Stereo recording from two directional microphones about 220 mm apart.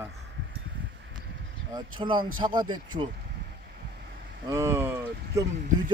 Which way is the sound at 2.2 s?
40° right (ahead or behind).